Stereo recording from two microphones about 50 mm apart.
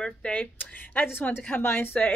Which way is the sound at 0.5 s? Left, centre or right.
Left.